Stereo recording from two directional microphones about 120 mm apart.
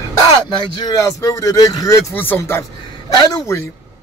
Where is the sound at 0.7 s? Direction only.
30° left (ahead or behind).